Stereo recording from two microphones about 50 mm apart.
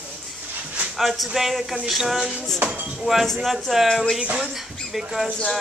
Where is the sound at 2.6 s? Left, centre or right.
Right.